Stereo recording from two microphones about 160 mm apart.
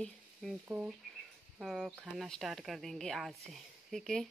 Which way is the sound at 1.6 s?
Centre (ahead or behind).